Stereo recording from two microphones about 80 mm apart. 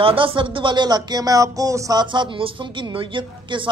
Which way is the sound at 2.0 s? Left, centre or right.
Right.